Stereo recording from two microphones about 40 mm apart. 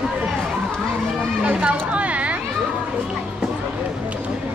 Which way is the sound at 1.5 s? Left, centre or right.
Right.